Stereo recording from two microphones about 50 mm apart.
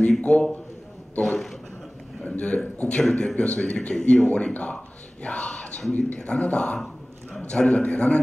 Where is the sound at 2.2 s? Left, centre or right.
Left.